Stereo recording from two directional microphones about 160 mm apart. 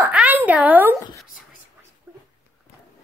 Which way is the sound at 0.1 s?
10° right (ahead or behind).